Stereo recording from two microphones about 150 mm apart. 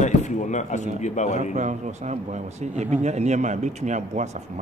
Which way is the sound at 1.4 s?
55° right (ahead or behind).